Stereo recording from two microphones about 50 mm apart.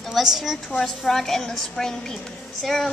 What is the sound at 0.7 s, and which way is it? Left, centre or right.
A woman's voice, centre.